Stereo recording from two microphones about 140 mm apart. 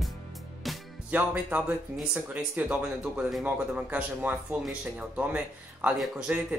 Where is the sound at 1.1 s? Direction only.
15° right (ahead or behind).